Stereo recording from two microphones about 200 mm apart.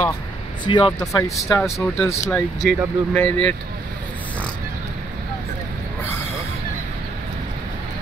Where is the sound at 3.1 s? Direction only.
5° left (ahead or behind).